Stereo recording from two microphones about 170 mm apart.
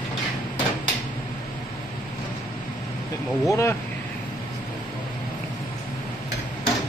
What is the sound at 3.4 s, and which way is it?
Speech, 15° left (ahead or behind).